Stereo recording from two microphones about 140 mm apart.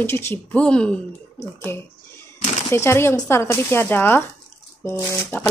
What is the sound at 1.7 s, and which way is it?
Speech, 15° left (ahead or behind).